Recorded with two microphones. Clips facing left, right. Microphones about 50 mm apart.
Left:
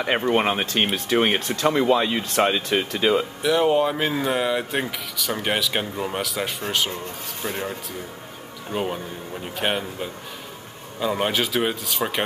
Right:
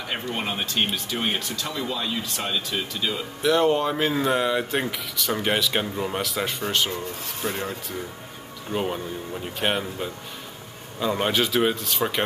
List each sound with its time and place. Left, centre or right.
0.0 s speech: left
3.4 s speech: centre
8.7 s speech: centre